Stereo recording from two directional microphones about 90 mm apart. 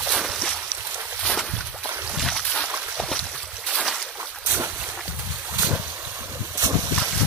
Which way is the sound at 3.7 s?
Centre (ahead or behind).